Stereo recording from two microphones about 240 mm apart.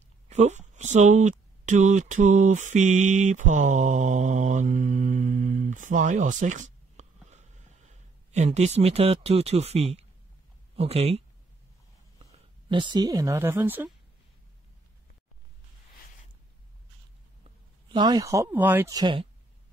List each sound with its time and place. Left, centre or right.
0.3 s speech: right; by 13.8 s centre
17.8 s speech: centre